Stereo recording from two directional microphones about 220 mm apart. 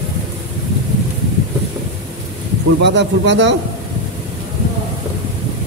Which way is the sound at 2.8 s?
50° right (ahead or behind).